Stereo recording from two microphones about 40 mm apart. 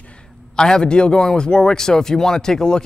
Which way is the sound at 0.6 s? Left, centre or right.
Centre.